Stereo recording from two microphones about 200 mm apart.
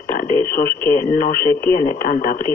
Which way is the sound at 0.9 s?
45° left (ahead or behind).